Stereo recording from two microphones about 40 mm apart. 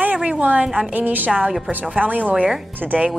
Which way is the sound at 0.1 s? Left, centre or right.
Right.